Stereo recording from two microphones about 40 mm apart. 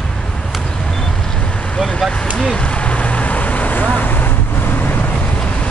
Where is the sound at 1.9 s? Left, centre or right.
Centre.